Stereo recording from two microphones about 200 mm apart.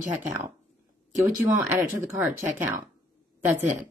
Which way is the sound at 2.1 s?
10° right (ahead or behind).